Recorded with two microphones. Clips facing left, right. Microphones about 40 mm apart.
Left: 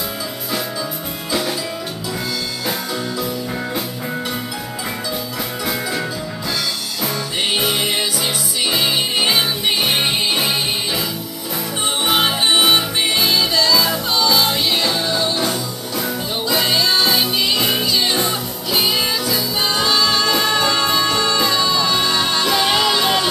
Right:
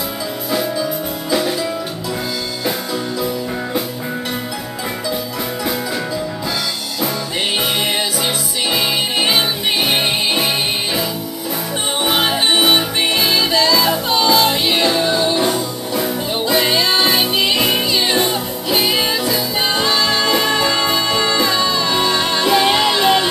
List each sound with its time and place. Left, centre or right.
0.5 s music: centre
7.5 s music: centre
9.2 s music: centre
12.1 s music: centre